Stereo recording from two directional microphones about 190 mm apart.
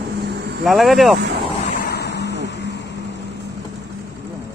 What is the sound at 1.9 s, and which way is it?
Vehicle, 60° left (ahead or behind).